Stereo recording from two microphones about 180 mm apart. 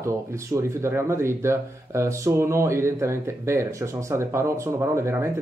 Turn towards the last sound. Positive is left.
turn(degrees=-15)  # may be behind; listen again after turning